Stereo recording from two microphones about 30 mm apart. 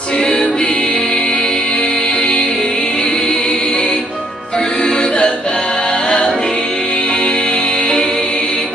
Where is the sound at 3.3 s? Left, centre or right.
Left.